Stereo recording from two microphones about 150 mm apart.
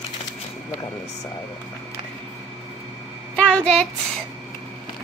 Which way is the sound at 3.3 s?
5° left (ahead or behind).